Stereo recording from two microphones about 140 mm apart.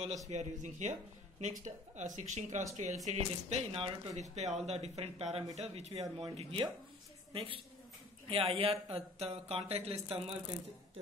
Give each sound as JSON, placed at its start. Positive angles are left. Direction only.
{"t": 0.3, "sound": "speech", "side_deg": -55}
{"t": 6.0, "sound": "speech", "side_deg": -35}